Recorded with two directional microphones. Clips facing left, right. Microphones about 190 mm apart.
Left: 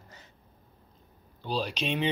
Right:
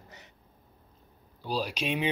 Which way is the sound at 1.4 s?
10° right (ahead or behind).